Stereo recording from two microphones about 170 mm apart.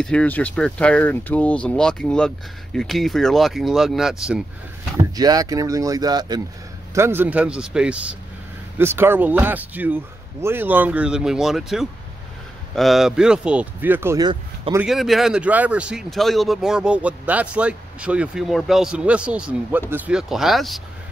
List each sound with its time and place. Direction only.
0.0 s speech: 5° left (ahead or behind)
5.1 s speech: 20° right (ahead or behind)
14.2 s speech: 30° right (ahead or behind)
14.9 s speech: centre (ahead or behind)